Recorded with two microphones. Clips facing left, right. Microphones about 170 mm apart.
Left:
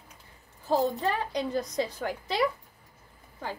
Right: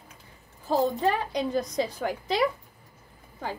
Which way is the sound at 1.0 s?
15° right (ahead or behind).